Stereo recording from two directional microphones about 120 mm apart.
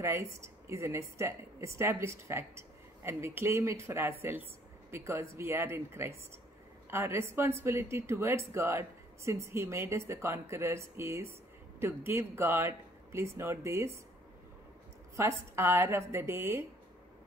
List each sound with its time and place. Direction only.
0.0 s a woman's voice: 20° right (ahead or behind)
15.1 s a woman's voice: 20° right (ahead or behind)